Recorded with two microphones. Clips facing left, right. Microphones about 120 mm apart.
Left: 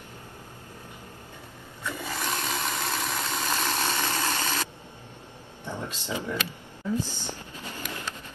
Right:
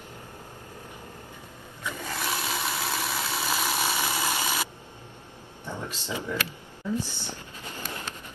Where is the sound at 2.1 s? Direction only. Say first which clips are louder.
Even; 5° right (ahead or behind).